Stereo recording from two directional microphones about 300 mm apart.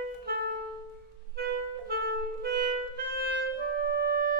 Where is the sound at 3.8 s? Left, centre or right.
Right.